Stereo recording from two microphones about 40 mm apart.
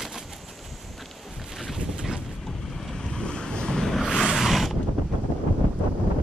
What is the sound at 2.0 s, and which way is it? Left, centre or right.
Boat, right.